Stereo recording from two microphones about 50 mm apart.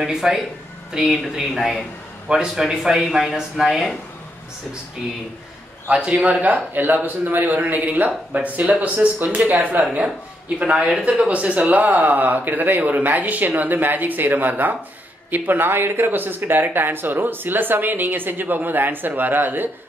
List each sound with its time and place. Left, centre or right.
0.0 s speech: centre
5.9 s speech: right
10.6 s speech: right